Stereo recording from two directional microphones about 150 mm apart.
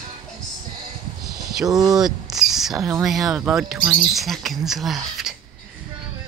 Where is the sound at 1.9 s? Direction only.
Centre (ahead or behind).